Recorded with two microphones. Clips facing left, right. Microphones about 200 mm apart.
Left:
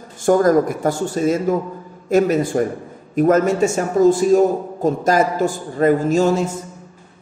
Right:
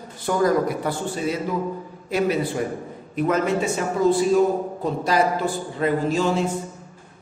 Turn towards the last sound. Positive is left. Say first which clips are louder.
# left 5 dB
turn(degrees=45)  # may be behind; listen again after turning